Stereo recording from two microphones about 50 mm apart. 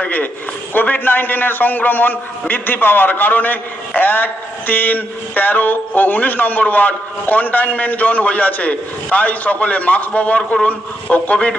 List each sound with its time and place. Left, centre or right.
0.7 s a man's voice: left